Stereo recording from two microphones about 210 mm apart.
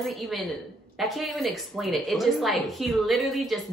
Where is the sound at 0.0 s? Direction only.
Centre (ahead or behind).